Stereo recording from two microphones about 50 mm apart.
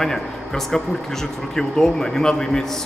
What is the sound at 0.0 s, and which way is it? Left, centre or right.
Speech, centre.